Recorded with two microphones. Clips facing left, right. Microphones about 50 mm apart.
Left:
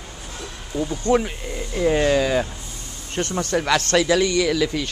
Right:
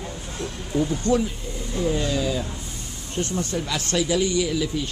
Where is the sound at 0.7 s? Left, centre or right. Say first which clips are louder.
Right 2 dB; centre.